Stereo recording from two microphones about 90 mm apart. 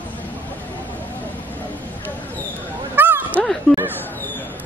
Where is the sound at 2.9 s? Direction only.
20° right (ahead or behind).